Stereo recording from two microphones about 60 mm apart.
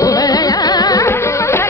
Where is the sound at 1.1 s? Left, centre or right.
Left.